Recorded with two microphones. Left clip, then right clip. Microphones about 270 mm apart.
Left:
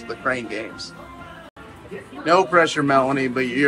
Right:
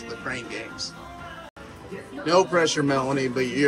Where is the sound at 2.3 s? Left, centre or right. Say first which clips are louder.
Left 4 dB; centre.